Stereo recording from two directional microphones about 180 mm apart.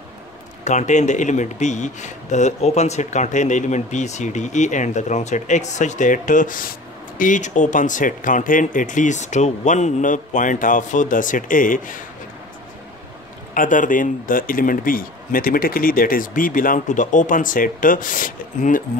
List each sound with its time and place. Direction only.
0.7 s speech: 40° left (ahead or behind)
13.6 s speech: 45° left (ahead or behind)